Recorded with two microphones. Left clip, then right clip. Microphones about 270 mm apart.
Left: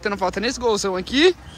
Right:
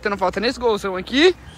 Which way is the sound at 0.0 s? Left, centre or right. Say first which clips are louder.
Right 2 dB; centre.